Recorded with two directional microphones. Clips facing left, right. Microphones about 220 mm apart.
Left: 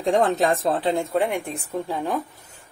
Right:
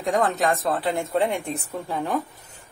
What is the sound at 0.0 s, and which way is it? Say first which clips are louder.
Speech: left 3 dB; 30° left (ahead or behind).